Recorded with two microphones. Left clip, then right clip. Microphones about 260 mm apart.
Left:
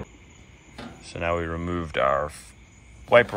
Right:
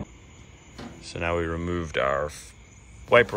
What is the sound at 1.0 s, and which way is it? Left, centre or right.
Speech, centre.